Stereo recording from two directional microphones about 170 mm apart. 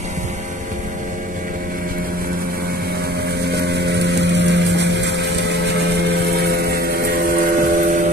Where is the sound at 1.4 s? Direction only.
55° right (ahead or behind).